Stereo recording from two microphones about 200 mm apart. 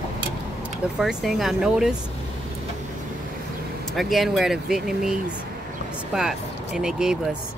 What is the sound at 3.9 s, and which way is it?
Speech, centre (ahead or behind).